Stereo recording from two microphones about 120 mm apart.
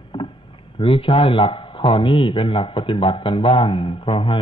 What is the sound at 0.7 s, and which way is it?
A man's voice, 45° left (ahead or behind).